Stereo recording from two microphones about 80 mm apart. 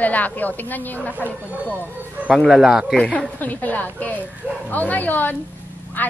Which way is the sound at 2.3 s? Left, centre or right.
Centre.